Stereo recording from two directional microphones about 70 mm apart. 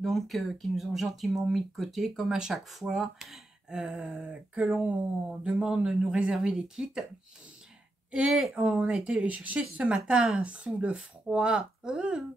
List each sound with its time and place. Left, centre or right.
0.0 s speech: centre
4.2 s speech: centre
8.1 s speech: centre